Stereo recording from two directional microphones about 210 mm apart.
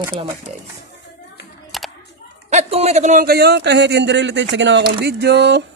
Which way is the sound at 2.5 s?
30° right (ahead or behind).